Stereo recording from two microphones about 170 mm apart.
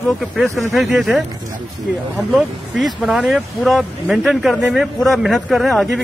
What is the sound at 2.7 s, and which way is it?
Speech, centre (ahead or behind).